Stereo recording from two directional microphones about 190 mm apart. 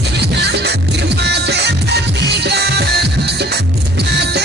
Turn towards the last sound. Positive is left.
turn(degrees=-60)  # may be behind; listen again after turning